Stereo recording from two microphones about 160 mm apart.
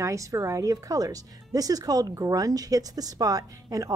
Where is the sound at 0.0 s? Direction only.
20° right (ahead or behind).